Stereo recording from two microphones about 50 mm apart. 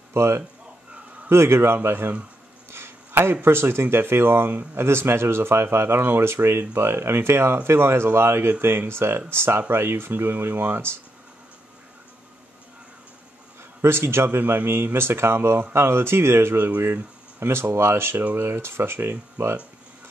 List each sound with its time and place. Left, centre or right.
0.1 s speech: right
13.7 s speech: right
16.5 s speech: right
16.8 s speech: right